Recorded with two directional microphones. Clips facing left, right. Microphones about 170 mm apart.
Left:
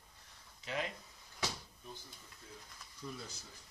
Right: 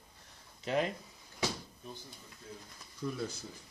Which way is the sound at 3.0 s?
60° right (ahead or behind).